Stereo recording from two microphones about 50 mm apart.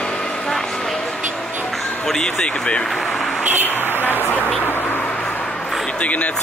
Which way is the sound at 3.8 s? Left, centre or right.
Left.